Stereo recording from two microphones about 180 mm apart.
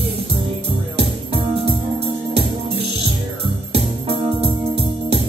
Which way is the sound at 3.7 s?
30° right (ahead or behind).